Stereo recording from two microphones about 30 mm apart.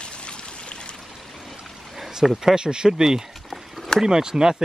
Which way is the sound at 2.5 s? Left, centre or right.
Right.